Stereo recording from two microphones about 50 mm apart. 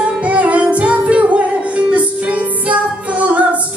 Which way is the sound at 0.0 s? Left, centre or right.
Right.